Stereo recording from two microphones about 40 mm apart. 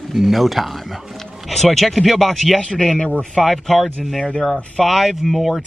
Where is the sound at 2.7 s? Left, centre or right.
Centre.